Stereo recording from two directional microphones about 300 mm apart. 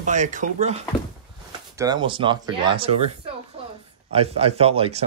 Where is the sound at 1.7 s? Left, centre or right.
Centre.